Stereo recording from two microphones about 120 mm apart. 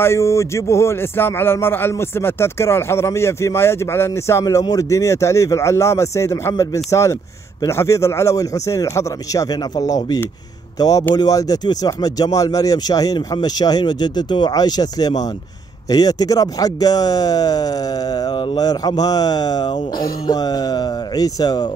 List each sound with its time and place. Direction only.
0.0 s a man's voice: 20° left (ahead or behind)